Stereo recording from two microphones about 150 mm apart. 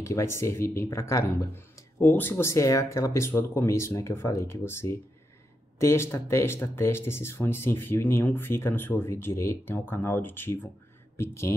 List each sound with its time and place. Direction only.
0.0 s speech: 20° left (ahead or behind)